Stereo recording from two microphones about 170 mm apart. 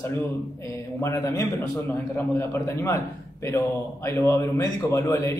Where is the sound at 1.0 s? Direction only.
15° left (ahead or behind).